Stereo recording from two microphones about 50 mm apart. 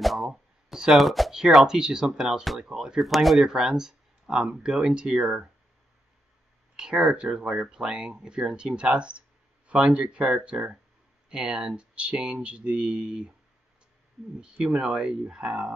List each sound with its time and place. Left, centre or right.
0.0 s a sound: centre
1.7 s speech: centre
6.8 s speech: centre
14.4 s speech: centre